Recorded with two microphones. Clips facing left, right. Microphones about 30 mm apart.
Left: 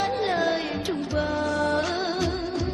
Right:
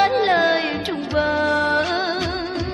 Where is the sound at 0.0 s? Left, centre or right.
Right.